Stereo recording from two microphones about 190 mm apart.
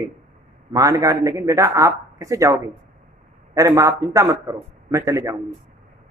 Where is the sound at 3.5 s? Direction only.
15° right (ahead or behind).